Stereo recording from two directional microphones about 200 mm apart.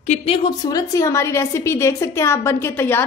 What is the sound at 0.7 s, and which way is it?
A woman's voice, 15° left (ahead or behind).